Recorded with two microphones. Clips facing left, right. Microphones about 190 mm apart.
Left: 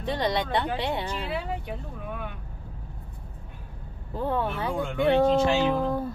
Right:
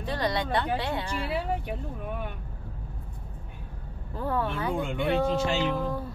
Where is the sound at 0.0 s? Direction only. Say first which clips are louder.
Left 2 dB; 20° left (ahead or behind).